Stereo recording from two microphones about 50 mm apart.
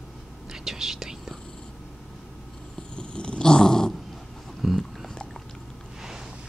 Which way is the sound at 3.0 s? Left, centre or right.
Left.